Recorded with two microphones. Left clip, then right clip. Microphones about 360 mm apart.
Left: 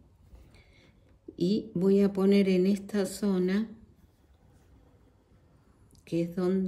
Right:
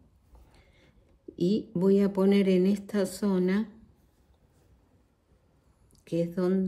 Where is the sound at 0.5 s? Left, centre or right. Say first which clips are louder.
Left 2 dB; centre.